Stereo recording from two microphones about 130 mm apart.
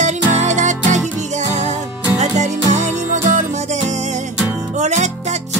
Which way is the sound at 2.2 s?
65° right (ahead or behind).